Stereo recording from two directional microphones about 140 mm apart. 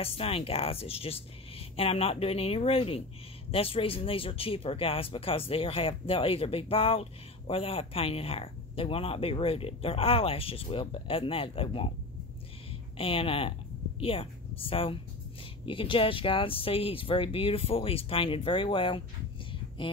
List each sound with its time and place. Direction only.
0.0 s speech: 45° left (ahead or behind)
12.9 s a woman's voice: 40° left (ahead or behind)